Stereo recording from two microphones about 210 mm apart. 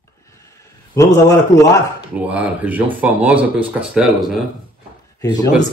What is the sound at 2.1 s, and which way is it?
Speech, 5° right (ahead or behind).